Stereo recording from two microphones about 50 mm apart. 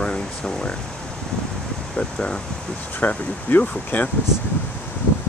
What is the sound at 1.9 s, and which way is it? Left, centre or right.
Speech, centre.